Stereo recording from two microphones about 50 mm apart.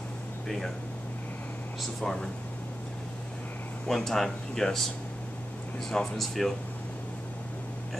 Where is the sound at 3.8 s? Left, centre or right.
Centre.